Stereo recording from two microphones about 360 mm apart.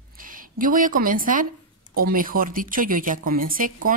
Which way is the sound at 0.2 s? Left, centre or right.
Right.